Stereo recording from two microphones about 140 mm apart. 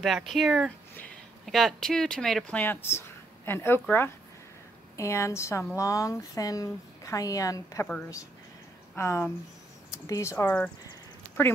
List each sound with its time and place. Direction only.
0.0 s speech: centre (ahead or behind)
2.6 s speech: 15° left (ahead or behind)
8.9 s speech: 20° left (ahead or behind)